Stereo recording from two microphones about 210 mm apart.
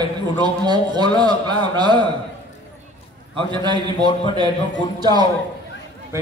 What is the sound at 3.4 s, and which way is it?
Speech, 20° right (ahead or behind).